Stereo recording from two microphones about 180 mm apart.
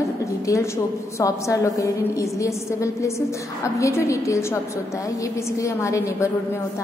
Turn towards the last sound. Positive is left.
turn(degrees=15)  # may be behind; listen again after turning